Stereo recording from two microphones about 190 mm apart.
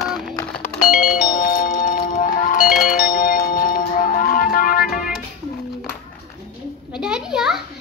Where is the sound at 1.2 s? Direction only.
45° left (ahead or behind).